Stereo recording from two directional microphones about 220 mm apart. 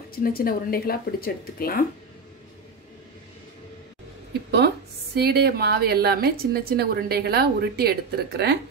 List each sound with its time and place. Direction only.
0.1 s speech: 40° left (ahead or behind)
5.1 s a woman's voice: 45° right (ahead or behind)